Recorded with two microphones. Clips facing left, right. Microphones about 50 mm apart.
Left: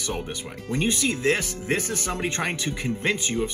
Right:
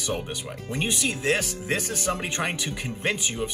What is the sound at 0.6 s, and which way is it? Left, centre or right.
Speech, right.